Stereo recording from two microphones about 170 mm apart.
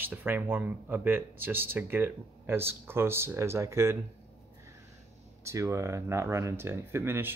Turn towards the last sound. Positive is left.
turn(degrees=-15)  # may be behind; listen again after turning